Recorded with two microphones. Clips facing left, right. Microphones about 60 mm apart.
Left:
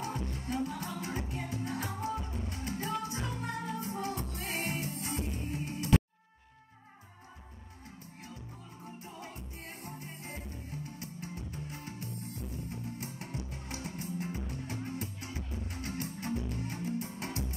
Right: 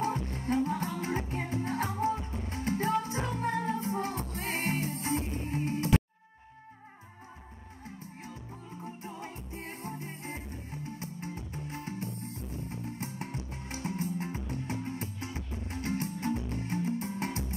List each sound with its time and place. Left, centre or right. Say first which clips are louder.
0.0 s music: right 6 dB; right
9.0 s music: right 4 dB; right